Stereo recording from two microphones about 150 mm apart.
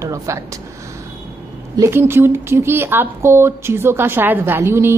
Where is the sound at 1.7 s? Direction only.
20° right (ahead or behind).